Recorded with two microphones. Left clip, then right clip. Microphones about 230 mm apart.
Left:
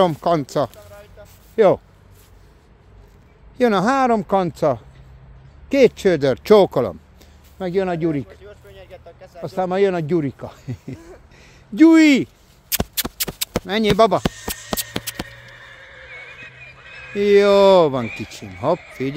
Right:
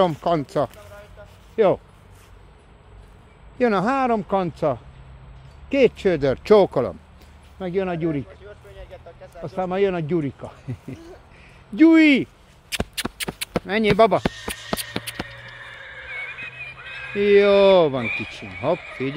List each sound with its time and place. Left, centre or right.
0.0 s speech: left
3.5 s speech: left
8.5 s vehicle: left
9.4 s speech: left
15.0 s a sound: left
15.4 s horse: left
16.5 s neigh: centre
17.1 s speech: centre
18.0 s speech: centre
18.6 s speech: left